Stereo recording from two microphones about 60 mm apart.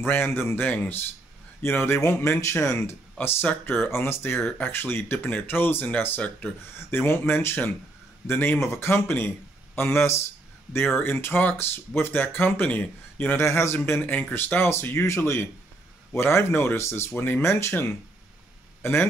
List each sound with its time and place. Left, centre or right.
0.0 s speech: left
0.6 s speech: left
1.6 s speech: left
3.2 s speech: left
8.7 s speech: left
13.4 s speech: left
13.8 s speech: left
18.8 s a man's voice: left